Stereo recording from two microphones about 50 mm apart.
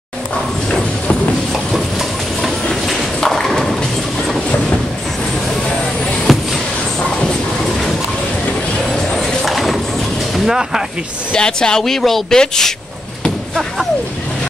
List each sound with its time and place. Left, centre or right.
1.5 s train: centre
6.3 s a sound: centre
9.1 s a sound: centre
10.4 s speech: centre
11.3 s speech: centre
11.8 s speech: centre